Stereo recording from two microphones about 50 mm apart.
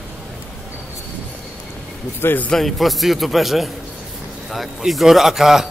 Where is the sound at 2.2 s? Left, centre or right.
Left.